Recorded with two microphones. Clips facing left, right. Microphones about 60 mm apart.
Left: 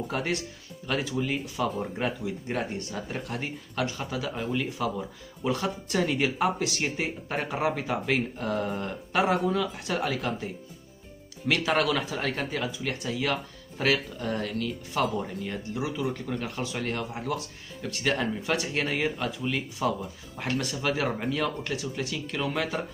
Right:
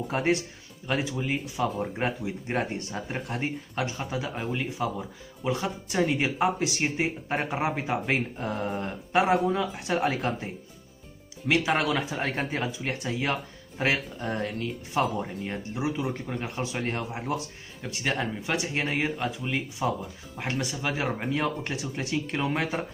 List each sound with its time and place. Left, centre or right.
0.1 s speech: right
11.4 s speech: centre
12.3 s speech: right
21.3 s speech: right